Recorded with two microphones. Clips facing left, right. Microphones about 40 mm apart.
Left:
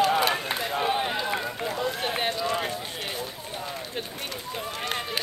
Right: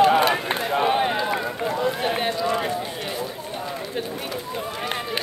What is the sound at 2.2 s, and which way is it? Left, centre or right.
Run, centre.